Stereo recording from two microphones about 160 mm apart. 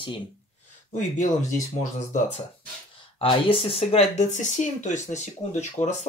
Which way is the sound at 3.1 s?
35° left (ahead or behind).